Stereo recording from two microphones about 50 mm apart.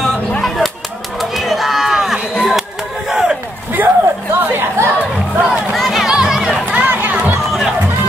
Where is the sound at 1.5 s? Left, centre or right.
Centre.